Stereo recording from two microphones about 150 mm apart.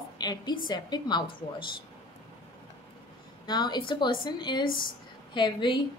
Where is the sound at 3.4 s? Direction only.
30° left (ahead or behind).